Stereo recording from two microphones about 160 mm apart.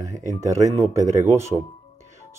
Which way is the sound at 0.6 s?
45° right (ahead or behind).